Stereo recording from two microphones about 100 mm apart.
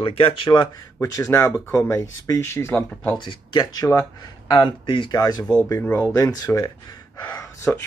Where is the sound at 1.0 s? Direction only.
35° left (ahead or behind).